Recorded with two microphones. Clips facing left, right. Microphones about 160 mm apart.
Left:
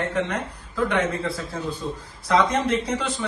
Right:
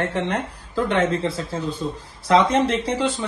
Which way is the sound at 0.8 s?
25° right (ahead or behind).